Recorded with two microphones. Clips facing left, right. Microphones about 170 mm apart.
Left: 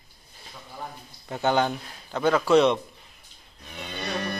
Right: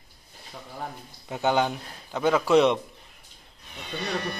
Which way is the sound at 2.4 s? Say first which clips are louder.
Left 1 dB; 15° right (ahead or behind).